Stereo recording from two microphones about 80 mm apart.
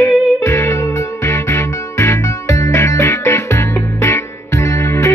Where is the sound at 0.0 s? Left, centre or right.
Left.